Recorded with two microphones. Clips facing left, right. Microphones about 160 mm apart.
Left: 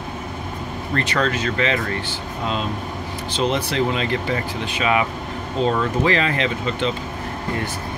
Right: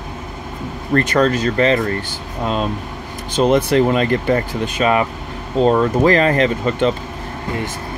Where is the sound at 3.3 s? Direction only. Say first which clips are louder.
Right 8 dB; 50° right (ahead or behind).